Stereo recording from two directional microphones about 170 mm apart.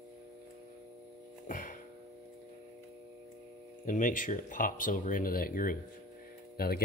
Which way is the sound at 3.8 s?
50° left (ahead or behind).